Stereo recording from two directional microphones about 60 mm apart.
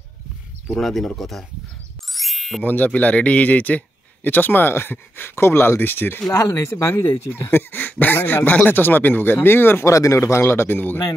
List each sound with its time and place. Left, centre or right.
0.7 s speech: centre
2.1 s ding: centre
2.6 s a man's voice: left
6.3 s speech: left
6.7 s speech: left
7.3 s a man's voice: left
9.8 s speech: left